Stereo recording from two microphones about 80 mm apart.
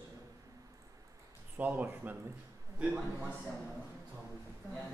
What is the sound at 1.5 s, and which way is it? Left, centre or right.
Speech, right.